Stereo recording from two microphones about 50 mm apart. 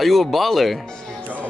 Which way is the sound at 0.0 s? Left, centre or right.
Centre.